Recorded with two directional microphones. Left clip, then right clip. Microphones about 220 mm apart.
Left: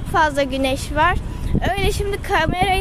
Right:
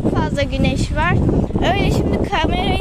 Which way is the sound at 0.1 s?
20° left (ahead or behind).